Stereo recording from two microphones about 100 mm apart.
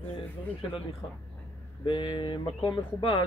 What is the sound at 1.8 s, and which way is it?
Speech, 55° left (ahead or behind).